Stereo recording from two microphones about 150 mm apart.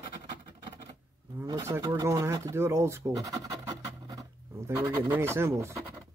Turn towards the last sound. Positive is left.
turn(degrees=-20)  # may be behind; listen again after turning